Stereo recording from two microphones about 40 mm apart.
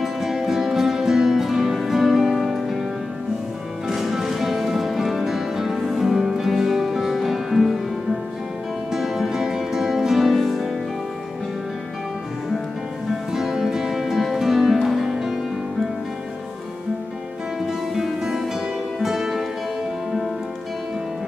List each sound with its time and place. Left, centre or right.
0.0 s music: centre
3.9 s music: centre
13.1 s music: centre
17.6 s music: centre